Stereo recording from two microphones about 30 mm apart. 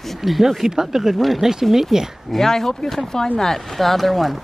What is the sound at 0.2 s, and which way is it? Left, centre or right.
Speech, centre.